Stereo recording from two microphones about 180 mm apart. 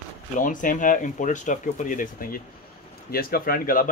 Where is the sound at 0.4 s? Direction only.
45° left (ahead or behind).